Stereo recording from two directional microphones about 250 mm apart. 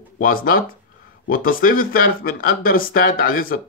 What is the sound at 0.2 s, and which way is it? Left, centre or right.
Speech, left.